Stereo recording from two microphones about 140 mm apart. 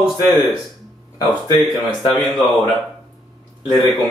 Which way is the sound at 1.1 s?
30° left (ahead or behind).